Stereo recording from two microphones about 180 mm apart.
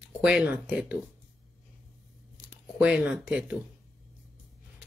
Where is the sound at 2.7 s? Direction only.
5° right (ahead or behind).